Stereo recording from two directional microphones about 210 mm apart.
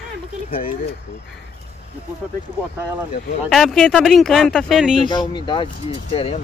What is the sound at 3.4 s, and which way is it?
Speech, centre (ahead or behind).